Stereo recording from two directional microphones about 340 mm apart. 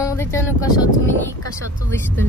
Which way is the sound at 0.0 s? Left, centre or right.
Centre.